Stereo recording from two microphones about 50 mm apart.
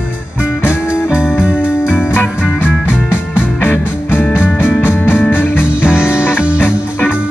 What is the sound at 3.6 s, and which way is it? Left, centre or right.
Music, left.